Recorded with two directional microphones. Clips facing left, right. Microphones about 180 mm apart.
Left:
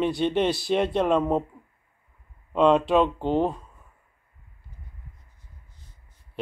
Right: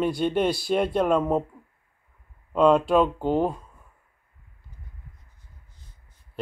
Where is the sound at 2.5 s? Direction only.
5° right (ahead or behind).